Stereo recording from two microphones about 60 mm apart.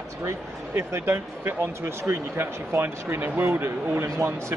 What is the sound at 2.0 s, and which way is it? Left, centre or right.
Speech, right.